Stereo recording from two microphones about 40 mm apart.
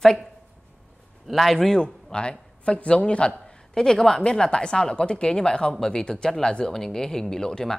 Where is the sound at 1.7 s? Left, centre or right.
Left.